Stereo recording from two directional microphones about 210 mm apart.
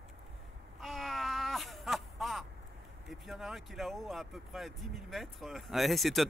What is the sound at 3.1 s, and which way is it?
Speech, centre (ahead or behind).